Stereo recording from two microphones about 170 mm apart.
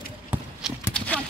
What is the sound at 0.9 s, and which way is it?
Clip-clop, 10° left (ahead or behind).